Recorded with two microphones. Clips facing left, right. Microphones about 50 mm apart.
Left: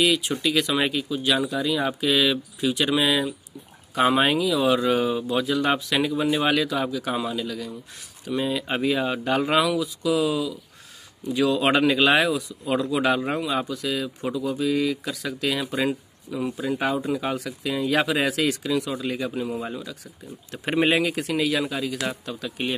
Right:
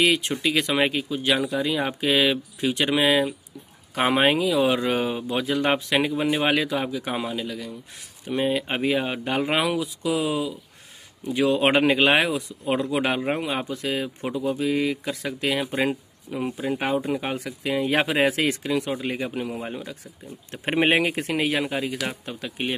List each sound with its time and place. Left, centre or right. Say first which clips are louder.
0.0 s speech: right 1 dB; right
0.4 s speech: right 1 dB; right; by 7.7 s centre
8.3 s speech: right 1 dB; right; by 9.5 s centre
9.5 s speech: left 2 dB; right
16.5 s speech: even; right
19.3 s speech: left 1 dB; right
19.7 s speech: even; right